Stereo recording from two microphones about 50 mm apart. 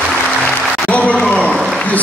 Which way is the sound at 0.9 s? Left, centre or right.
Left.